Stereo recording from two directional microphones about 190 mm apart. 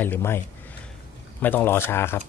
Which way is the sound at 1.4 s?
10° left (ahead or behind).